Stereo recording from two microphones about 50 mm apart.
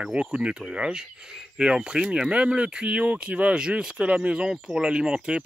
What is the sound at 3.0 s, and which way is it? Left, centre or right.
Speech, right.